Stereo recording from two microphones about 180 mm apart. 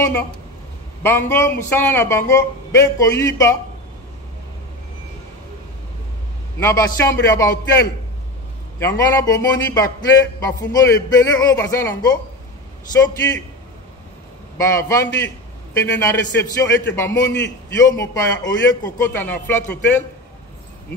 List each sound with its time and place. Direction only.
0.0 s speech: 10° left (ahead or behind)
6.6 s speech: 15° left (ahead or behind)
14.6 s speech: 15° left (ahead or behind)
16.6 s a man's voice: 75° left (ahead or behind)
16.9 s speech: 15° left (ahead or behind)